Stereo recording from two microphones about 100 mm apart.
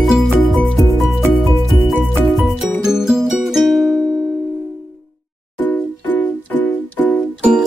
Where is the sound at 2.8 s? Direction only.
5° right (ahead or behind).